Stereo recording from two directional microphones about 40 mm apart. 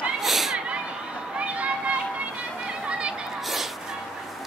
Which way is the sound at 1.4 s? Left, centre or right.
Right.